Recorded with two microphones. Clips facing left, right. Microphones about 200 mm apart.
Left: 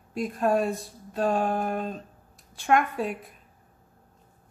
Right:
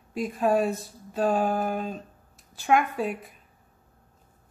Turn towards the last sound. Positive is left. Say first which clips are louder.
# right 1 dB
turn(degrees=0)  # may be behind; listen again after turning